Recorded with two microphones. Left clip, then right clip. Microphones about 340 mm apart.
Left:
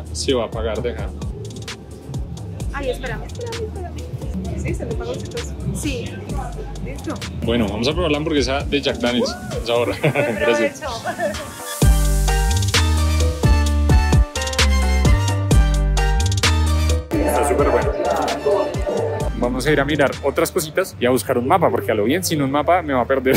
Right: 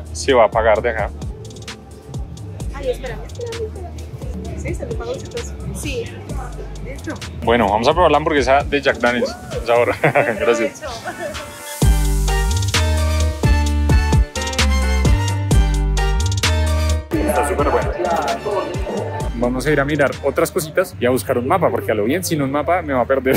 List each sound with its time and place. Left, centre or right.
0.2 s speech: centre
7.1 s speech: centre
11.8 s music: centre